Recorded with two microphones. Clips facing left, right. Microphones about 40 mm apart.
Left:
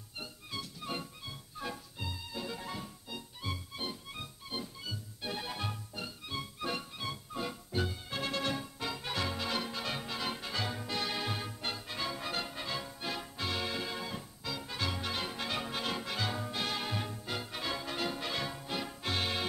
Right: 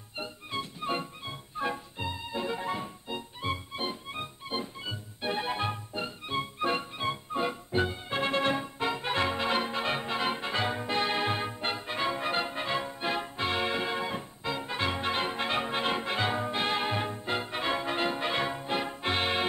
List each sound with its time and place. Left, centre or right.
0.2 s music: right